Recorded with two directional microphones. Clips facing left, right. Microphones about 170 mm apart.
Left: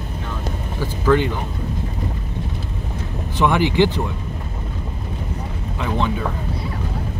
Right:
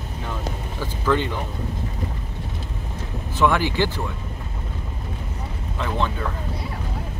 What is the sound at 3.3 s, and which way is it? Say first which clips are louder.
Speech: left 3 dB; 20° left (ahead or behind).